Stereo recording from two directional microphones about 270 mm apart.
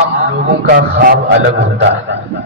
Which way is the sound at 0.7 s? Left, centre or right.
Right.